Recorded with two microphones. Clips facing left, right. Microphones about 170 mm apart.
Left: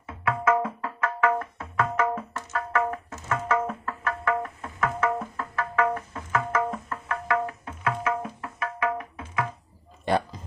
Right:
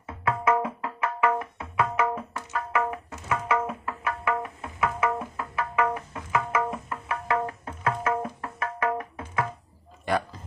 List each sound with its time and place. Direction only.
0.0 s music: 20° right (ahead or behind)
7.4 s music: 35° right (ahead or behind)
10.1 s a sound: 25° left (ahead or behind)